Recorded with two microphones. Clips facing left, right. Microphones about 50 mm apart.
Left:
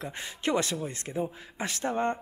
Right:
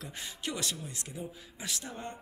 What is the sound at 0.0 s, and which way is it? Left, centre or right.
A man's voice, left.